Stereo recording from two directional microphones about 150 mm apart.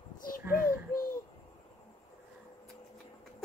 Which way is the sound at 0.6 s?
75° left (ahead or behind).